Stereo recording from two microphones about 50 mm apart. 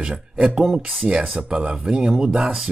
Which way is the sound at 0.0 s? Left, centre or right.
Centre.